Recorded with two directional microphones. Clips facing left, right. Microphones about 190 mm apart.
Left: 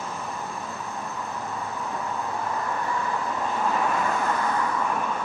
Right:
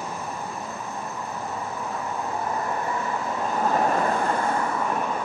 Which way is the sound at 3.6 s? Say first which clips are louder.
Right 4 dB; 40° right (ahead or behind).